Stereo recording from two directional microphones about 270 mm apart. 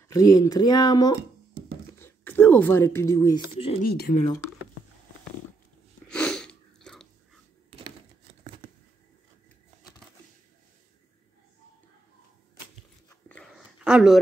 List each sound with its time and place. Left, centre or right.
0.1 s speech: centre
3.8 s speech: left
6.0 s sneeze: centre
13.3 s a sound: centre